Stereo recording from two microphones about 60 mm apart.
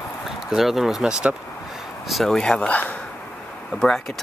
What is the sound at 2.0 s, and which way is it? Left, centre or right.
Speech, centre.